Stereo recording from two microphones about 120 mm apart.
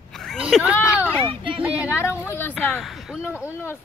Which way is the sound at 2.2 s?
20° left (ahead or behind).